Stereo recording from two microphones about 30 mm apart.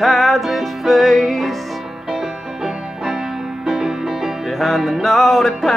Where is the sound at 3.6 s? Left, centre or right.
Right.